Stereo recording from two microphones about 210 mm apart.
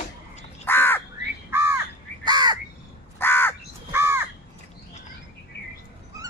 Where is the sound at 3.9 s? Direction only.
10° right (ahead or behind).